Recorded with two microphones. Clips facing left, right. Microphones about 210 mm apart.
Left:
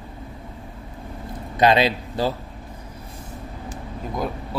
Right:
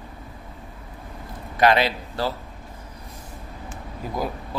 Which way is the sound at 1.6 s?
20° left (ahead or behind).